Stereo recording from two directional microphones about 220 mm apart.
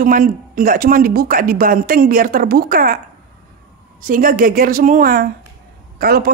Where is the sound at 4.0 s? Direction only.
40° right (ahead or behind).